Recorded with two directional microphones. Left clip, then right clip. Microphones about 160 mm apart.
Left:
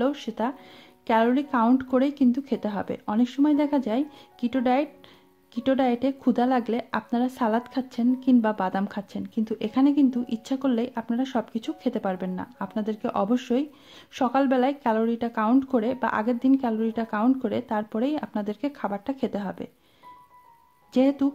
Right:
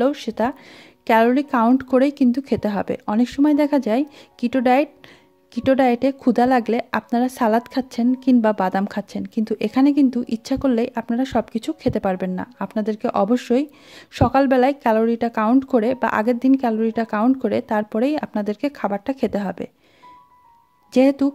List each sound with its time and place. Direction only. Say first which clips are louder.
0.0 s speech: right 6 dB; 35° right (ahead or behind)
20.9 s speech: right 6 dB; 40° right (ahead or behind)